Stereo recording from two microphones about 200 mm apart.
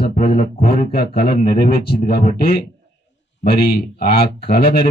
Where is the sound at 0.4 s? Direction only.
50° left (ahead or behind).